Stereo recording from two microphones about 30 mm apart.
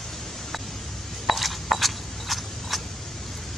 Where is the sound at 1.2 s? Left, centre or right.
Centre.